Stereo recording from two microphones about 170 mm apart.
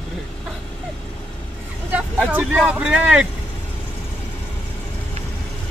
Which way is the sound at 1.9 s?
10° right (ahead or behind).